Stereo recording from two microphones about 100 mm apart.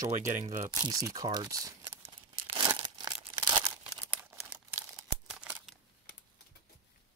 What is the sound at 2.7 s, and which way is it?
Crumpling, 50° right (ahead or behind).